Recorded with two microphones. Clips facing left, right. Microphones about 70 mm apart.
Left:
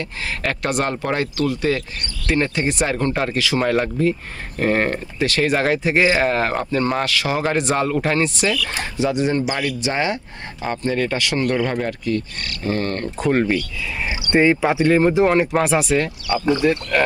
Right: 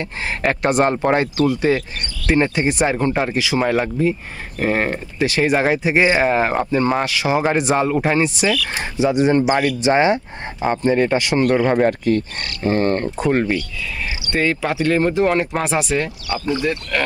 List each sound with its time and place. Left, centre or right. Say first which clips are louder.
0.0 s speech: right 4 dB; right
13.2 s speech: left 2 dB; centre
14.3 s speech: left 4 dB; centre